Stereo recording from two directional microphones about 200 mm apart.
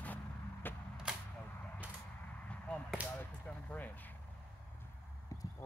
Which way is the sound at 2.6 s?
5° left (ahead or behind).